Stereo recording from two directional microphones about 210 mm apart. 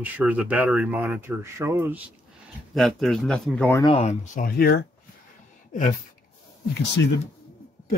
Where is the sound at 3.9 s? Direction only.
30° left (ahead or behind).